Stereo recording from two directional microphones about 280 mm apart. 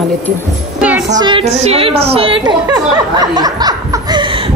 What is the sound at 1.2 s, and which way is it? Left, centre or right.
Music, centre.